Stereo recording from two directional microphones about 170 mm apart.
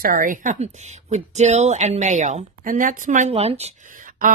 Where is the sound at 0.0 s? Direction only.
55° right (ahead or behind).